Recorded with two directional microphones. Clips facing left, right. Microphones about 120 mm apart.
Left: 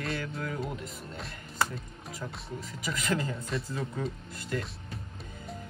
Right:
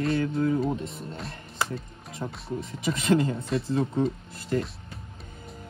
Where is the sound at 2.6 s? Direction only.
30° right (ahead or behind).